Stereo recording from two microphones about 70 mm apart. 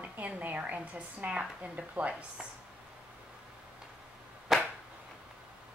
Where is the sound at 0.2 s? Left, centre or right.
Right.